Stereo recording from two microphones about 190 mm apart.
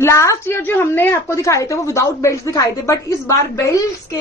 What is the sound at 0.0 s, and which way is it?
A woman's voice, 15° left (ahead or behind).